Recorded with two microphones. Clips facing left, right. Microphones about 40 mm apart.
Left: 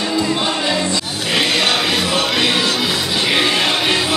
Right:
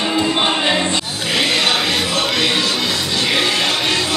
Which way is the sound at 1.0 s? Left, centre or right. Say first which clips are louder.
Left 1 dB; centre.